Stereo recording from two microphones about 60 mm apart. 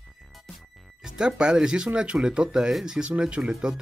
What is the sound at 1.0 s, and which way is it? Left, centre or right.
Speech, centre.